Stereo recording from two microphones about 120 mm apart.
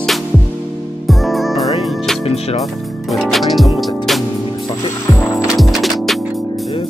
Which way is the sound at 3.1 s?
Centre (ahead or behind).